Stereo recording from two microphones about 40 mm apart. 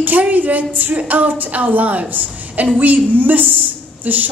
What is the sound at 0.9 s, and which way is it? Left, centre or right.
A woman's voice, right.